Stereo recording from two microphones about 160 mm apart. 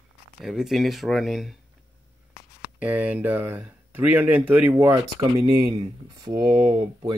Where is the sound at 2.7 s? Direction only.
10° right (ahead or behind).